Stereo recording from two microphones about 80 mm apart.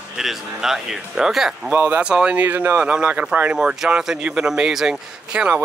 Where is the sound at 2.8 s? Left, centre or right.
Centre.